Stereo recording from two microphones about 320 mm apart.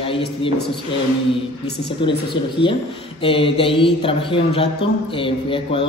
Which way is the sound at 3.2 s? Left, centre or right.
Centre.